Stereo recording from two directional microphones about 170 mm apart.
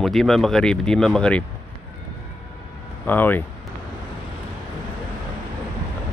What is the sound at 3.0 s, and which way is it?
Speech, 10° left (ahead or behind).